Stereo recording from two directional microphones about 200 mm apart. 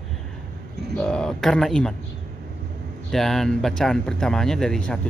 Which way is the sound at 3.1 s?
Centre (ahead or behind).